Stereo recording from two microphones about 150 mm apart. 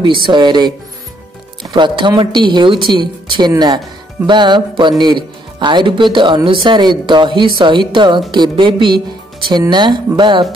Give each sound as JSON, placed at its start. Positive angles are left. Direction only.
{"t": 0.0, "sound": "a woman's voice", "side_deg": -30}